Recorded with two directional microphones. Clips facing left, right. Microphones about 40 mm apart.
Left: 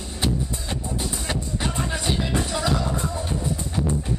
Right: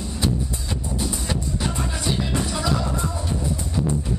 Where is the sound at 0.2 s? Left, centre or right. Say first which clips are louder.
Even; left.